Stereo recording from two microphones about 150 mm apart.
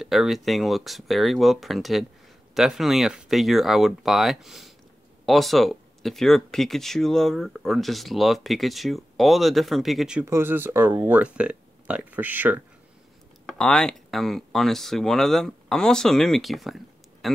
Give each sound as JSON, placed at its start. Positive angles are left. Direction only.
{"t": 0.0, "sound": "speech", "side_deg": 0}
{"t": 10.2, "sound": "speech", "side_deg": -15}
{"t": 13.5, "sound": "speech", "side_deg": 5}